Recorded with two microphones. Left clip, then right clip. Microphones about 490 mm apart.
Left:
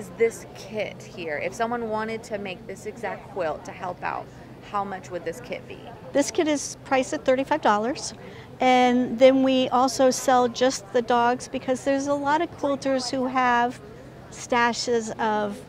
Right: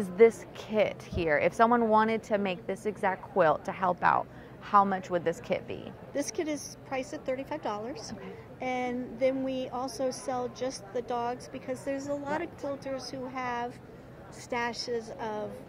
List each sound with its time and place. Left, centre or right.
0.0 s a woman's voice: right
6.1 s a woman's voice: left